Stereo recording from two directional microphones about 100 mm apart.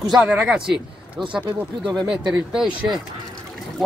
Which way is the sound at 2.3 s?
5° right (ahead or behind).